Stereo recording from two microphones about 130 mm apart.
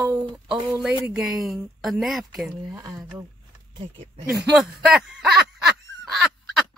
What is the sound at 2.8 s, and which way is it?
Speech, 25° right (ahead or behind).